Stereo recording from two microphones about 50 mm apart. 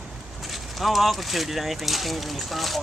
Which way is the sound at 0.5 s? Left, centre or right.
Centre.